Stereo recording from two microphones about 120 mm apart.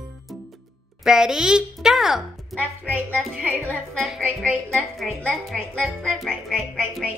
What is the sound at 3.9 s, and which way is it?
Speech, centre (ahead or behind).